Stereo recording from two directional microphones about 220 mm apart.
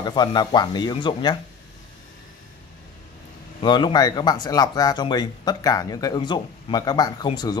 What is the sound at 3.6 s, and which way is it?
Speech, 20° left (ahead or behind).